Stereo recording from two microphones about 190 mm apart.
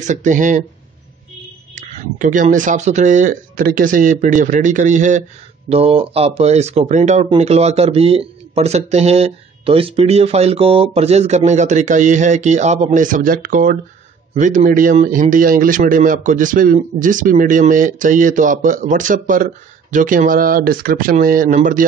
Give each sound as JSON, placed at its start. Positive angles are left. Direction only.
{"t": 0.0, "sound": "speech", "side_deg": -40}
{"t": 1.8, "sound": "speech", "side_deg": -40}